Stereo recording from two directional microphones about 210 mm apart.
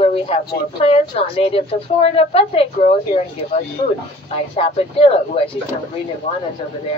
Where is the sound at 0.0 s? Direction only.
30° left (ahead or behind).